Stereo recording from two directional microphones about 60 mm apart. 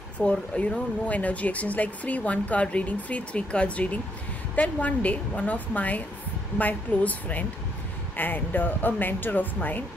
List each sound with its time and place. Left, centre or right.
0.2 s speech: centre